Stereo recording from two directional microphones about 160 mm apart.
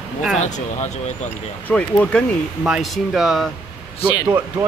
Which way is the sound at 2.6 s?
Centre (ahead or behind).